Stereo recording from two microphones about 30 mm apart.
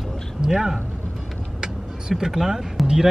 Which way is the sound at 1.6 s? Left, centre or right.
Centre.